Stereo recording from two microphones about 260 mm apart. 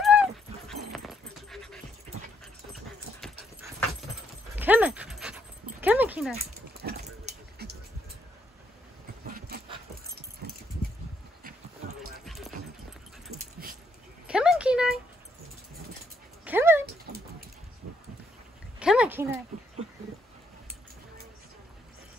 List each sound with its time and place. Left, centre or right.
0.0 s dog: centre
4.6 s dog: centre
6.7 s pig: right
12.3 s music: centre
13.4 s dog: right
14.2 s a sound: centre
16.4 s dog: centre
18.8 s a sound: centre